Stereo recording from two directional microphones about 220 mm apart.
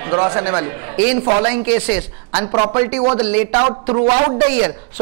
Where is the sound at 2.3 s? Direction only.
25° right (ahead or behind).